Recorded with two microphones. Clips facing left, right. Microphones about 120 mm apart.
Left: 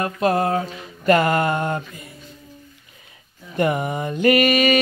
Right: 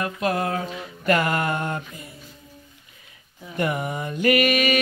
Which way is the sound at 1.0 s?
30° left (ahead or behind).